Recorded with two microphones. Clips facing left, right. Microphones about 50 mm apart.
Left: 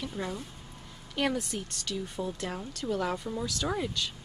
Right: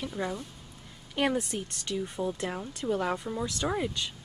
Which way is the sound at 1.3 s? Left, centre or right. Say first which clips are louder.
Right 2 dB; right.